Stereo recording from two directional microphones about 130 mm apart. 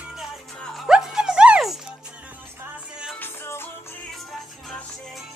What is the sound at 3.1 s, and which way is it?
Music, 15° left (ahead or behind).